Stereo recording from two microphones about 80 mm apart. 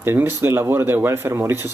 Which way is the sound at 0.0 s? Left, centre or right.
Right.